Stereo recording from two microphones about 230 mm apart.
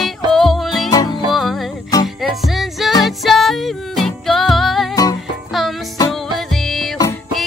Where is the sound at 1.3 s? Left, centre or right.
Centre.